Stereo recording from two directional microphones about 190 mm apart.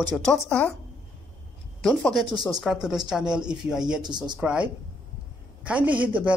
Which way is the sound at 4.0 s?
25° right (ahead or behind).